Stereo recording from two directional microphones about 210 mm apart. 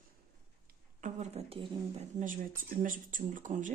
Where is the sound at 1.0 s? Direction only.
30° right (ahead or behind).